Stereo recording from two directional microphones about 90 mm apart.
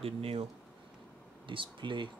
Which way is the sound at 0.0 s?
90° right.